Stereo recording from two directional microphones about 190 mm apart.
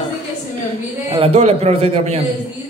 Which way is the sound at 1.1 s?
30° right (ahead or behind).